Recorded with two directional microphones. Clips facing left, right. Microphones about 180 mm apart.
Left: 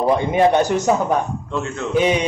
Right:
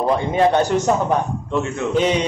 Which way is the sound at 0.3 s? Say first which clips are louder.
Right 1 dB; 15° left (ahead or behind).